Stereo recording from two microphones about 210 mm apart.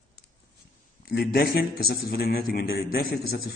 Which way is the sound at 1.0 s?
45° left (ahead or behind).